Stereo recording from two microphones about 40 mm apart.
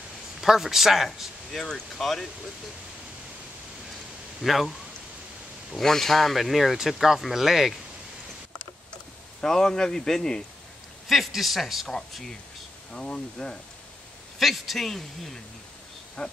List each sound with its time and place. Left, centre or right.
0.4 s speech: centre
1.5 s a man's voice: centre
4.4 s speech: centre
5.8 s a man's voice: centre
9.4 s a man's voice: centre
11.1 s speech: centre
12.9 s speech: left
14.4 s speech: centre
16.2 s speech: left